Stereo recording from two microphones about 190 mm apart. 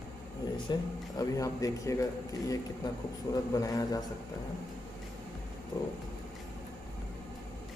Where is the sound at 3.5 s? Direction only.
20° left (ahead or behind).